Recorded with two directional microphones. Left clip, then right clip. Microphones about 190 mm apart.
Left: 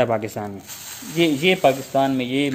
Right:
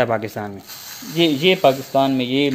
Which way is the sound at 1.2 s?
25° right (ahead or behind).